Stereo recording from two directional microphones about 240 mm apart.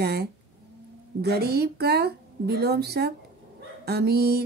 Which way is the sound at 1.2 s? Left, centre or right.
Right.